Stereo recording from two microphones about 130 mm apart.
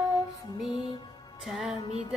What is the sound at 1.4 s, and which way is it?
Music, 5° right (ahead or behind).